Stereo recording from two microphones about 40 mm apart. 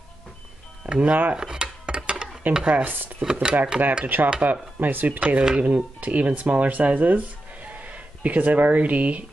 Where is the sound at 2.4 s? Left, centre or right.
Right.